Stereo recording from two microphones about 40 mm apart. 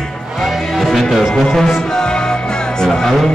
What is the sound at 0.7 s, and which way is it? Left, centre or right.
Music, centre.